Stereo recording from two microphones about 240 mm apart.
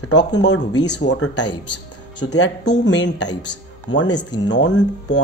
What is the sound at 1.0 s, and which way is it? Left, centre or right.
Speech, left.